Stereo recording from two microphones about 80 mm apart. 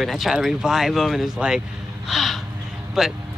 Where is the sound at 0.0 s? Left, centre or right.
Centre.